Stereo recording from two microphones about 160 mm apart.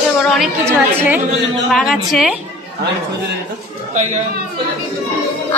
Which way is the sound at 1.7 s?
Centre (ahead or behind).